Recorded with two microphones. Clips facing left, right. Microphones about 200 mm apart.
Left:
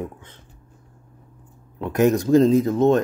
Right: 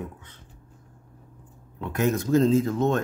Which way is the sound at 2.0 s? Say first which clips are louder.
Left 7 dB; 40° left (ahead or behind).